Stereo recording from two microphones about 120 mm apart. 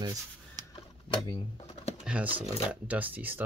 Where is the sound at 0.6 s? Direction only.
35° right (ahead or behind).